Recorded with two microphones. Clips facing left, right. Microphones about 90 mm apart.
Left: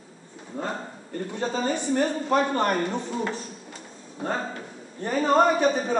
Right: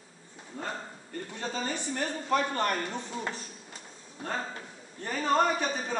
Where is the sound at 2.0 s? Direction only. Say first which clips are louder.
Left 3 dB; 25° left (ahead or behind).